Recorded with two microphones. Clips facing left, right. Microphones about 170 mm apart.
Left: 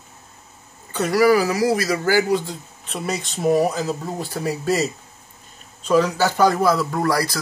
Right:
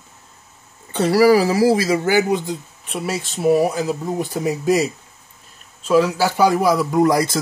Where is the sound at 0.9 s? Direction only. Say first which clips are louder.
Right 3 dB; 30° right (ahead or behind).